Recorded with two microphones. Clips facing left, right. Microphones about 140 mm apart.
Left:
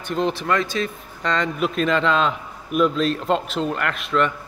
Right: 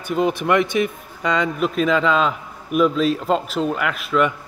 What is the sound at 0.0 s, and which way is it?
Speech, 10° right (ahead or behind).